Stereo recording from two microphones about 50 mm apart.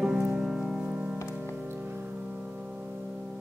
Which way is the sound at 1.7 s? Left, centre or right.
Right.